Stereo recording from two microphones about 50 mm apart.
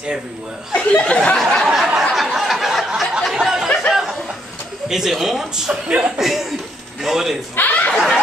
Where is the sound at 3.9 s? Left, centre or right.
Centre.